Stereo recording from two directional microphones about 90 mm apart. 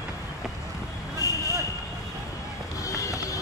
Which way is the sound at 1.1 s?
40° left (ahead or behind).